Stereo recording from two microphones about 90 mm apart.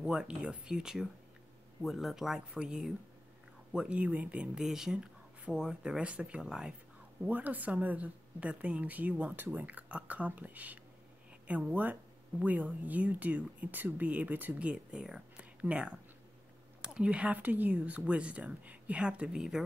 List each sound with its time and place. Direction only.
0.0 s speech: 10° right (ahead or behind)
16.9 s speech: 10° right (ahead or behind)